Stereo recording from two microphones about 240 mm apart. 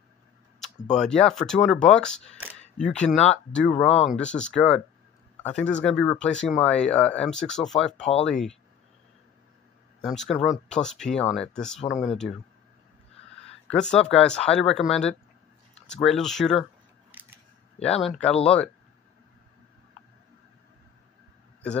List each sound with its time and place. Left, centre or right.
0.9 s speech: centre
10.0 s speech: centre
13.7 s speech: centre
17.1 s scissors: centre
17.8 s speech: centre